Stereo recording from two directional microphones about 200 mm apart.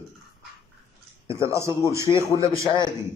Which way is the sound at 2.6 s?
20° left (ahead or behind).